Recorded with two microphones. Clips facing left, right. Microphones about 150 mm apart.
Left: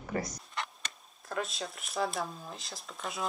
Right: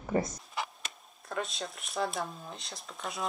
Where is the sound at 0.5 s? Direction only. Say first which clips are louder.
Right 2 dB; centre (ahead or behind).